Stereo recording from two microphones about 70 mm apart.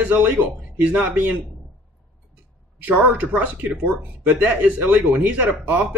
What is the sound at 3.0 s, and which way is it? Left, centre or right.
Speech, right.